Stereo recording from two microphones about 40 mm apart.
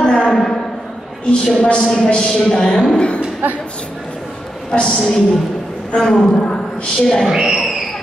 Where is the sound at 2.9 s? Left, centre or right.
Left.